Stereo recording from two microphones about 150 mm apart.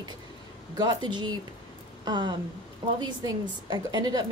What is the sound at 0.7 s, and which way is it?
A woman's voice, 30° right (ahead or behind).